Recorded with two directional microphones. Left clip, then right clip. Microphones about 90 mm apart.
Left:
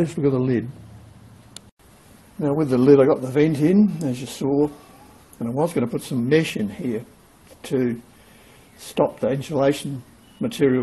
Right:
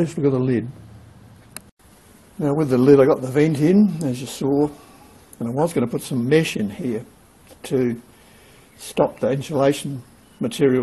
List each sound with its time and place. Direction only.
0.0 s a man's voice: 10° right (ahead or behind)
2.4 s speech: 20° right (ahead or behind)
8.9 s speech: 20° right (ahead or behind)